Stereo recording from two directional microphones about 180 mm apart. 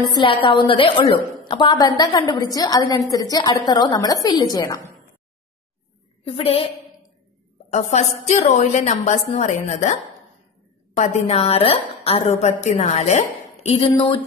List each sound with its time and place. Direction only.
0.1 s a woman's voice: 25° left (ahead or behind)
6.2 s a woman's voice: 30° left (ahead or behind)
7.7 s a woman's voice: 40° left (ahead or behind)
11.0 s a woman's voice: 35° left (ahead or behind)